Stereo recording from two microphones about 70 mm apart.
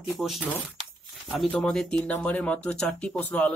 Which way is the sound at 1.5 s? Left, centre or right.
Centre.